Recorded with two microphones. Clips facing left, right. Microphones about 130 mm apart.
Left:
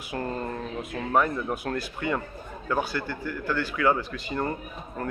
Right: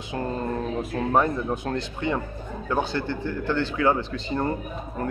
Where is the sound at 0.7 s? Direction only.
30° right (ahead or behind).